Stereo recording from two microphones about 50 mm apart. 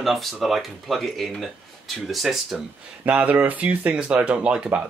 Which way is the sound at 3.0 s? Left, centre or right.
Right.